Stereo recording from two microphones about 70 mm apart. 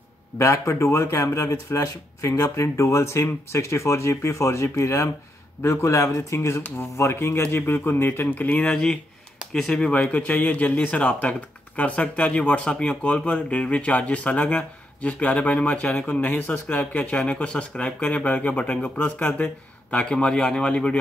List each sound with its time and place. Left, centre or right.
0.4 s speech: left
8.5 s speech: centre
9.5 s speech: centre
9.8 s speech: centre